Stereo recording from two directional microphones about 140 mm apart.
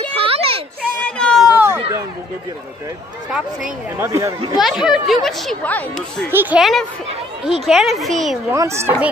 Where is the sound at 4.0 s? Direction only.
20° right (ahead or behind).